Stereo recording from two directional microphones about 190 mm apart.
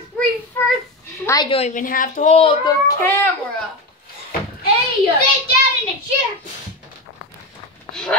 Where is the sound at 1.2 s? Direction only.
20° left (ahead or behind).